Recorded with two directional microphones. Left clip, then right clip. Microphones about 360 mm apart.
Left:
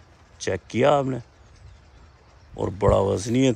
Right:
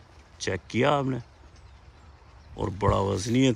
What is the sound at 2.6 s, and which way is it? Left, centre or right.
Speech, centre.